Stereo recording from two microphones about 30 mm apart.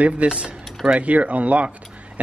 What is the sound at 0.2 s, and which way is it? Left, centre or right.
Speech, right.